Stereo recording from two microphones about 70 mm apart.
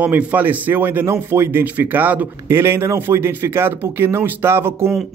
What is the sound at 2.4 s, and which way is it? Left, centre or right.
A man's voice, right.